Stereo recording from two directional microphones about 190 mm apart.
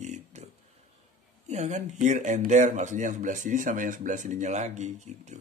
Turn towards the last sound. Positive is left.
turn(degrees=-40)  # may be behind; listen again after turning